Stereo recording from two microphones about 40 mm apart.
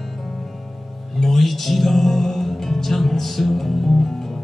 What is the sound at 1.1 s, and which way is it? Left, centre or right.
Music, centre.